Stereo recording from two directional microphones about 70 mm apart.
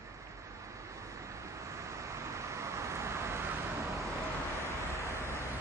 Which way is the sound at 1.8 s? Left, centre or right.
Right.